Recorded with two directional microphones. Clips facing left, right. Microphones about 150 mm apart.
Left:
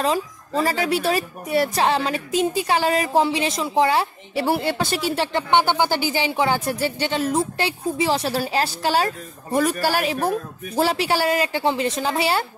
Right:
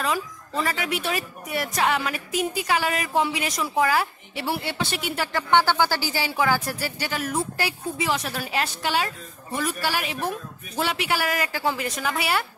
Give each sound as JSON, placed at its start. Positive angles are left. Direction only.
{"t": 0.0, "sound": "a woman's voice", "side_deg": 30}
{"t": 4.4, "sound": "a woman's voice", "side_deg": 45}